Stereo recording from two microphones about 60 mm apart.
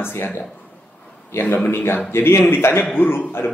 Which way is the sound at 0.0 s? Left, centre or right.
Left.